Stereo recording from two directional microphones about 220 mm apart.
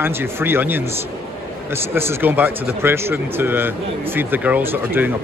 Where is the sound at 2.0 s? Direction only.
10° right (ahead or behind).